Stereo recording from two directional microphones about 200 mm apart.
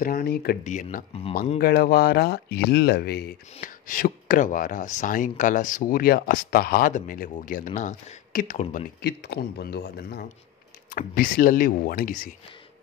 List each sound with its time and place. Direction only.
0.0 s speech: 50° left (ahead or behind)
0.7 s speech: 40° left (ahead or behind)
1.6 s speech: 50° left (ahead or behind)
3.5 s speech: 40° left (ahead or behind)
9.0 s speech: 55° left (ahead or behind)